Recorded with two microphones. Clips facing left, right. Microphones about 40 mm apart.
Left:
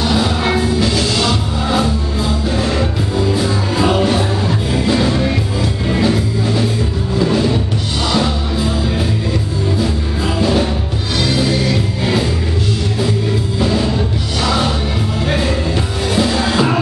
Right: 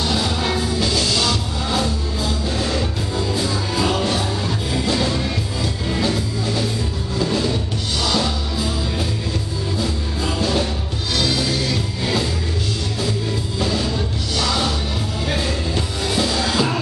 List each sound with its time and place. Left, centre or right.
0.0 s music: centre
9.8 s music: centre
13.6 s music: centre